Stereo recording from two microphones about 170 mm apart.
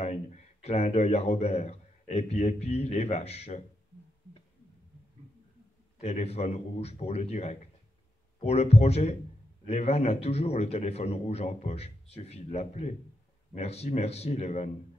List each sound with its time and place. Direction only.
0.0 s speech: 40° left (ahead or behind)
5.9 s a man's voice: 40° left (ahead or behind)